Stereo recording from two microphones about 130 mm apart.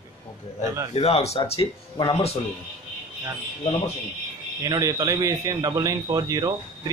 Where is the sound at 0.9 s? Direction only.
50° left (ahead or behind).